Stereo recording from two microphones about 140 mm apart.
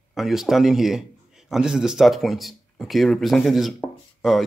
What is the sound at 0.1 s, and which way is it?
Speech, centre (ahead or behind).